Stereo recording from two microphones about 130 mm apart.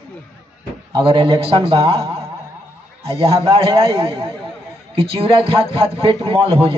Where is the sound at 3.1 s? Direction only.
45° right (ahead or behind).